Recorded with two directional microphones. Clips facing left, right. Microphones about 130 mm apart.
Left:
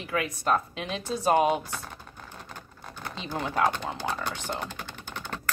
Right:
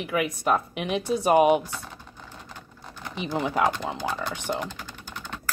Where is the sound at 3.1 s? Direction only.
15° right (ahead or behind).